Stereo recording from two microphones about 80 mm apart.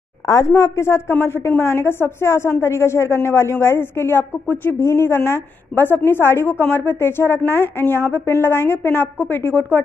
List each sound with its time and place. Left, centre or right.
0.6 s a woman's voice: left